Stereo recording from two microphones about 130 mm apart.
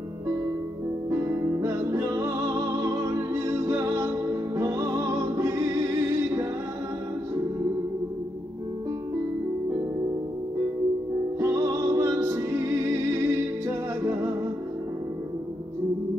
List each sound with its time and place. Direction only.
1.1 s music: 20° right (ahead or behind)
11.3 s music: 20° right (ahead or behind)